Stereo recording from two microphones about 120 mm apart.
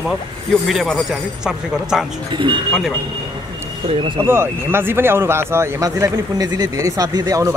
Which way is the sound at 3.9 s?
45° right (ahead or behind).